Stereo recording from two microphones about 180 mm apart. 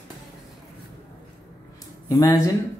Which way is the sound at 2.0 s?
20° left (ahead or behind).